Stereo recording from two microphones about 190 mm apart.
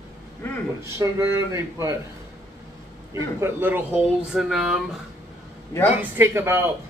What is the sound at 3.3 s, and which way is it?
Speech, 10° right (ahead or behind).